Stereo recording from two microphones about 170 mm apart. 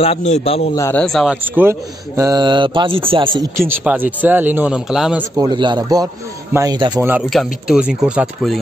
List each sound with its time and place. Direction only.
0.0 s a man's voice: 40° left (ahead or behind)
0.7 s a man's voice: 15° left (ahead or behind)
1.0 s speech: centre (ahead or behind)
1.6 s speech: 15° right (ahead or behind)
3.5 s a man's voice: 10° right (ahead or behind)
5.4 s speech: 25° right (ahead or behind)
7.0 s a man's voice: 10° right (ahead or behind)